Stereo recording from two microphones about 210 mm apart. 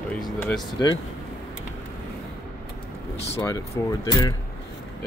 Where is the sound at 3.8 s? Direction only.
15° left (ahead or behind).